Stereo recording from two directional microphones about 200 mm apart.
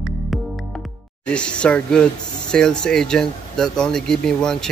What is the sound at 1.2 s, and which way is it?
Speech, 5° left (ahead or behind).